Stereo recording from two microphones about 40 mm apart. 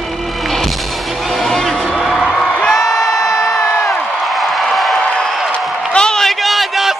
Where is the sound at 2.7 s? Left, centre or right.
Centre.